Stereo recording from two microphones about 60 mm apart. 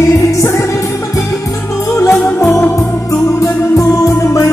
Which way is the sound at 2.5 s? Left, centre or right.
Left.